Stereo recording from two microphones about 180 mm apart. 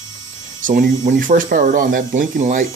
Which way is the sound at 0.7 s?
50° right (ahead or behind).